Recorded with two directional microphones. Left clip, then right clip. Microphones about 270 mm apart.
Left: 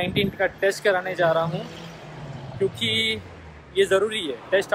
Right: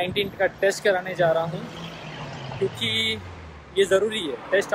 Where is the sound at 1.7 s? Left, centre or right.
Right.